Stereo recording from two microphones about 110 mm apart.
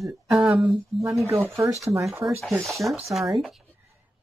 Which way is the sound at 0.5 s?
5° right (ahead or behind).